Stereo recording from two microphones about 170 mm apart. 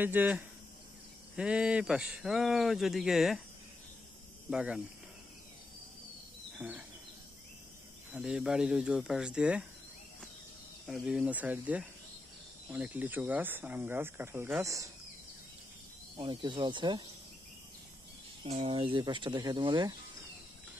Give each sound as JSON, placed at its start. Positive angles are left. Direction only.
{"t": 0.0, "sound": "speech", "side_deg": -10}
{"t": 4.5, "sound": "speech", "side_deg": -5}
{"t": 6.6, "sound": "speech", "side_deg": -10}
{"t": 8.1, "sound": "speech", "side_deg": -5}
{"t": 10.9, "sound": "speech", "side_deg": -5}
{"t": 16.2, "sound": "speech", "side_deg": -30}
{"t": 18.4, "sound": "speech", "side_deg": -35}